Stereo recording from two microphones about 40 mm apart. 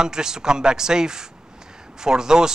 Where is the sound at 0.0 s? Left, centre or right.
Centre.